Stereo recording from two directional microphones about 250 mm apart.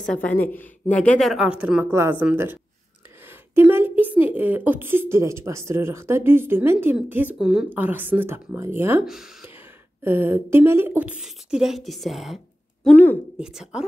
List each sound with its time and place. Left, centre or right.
0.0 s a woman's voice: centre